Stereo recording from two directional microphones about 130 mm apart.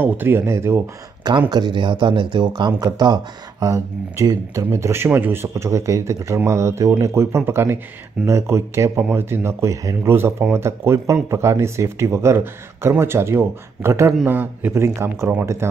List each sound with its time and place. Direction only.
0.0 s speech: 15° right (ahead or behind)
1.5 s speech: 35° right (ahead or behind); by 15.7 s 20° right (ahead or behind)